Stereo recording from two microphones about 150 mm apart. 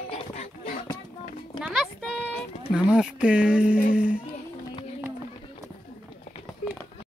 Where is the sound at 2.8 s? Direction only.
5° right (ahead or behind).